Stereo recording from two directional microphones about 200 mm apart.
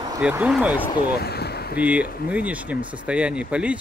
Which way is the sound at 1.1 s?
55° left (ahead or behind).